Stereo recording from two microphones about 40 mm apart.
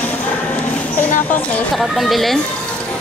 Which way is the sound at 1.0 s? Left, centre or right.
Left.